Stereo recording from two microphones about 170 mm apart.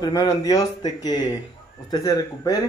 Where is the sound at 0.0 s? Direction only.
20° left (ahead or behind).